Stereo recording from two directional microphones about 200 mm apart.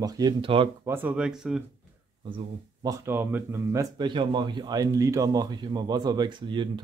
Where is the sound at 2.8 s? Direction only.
10° right (ahead or behind).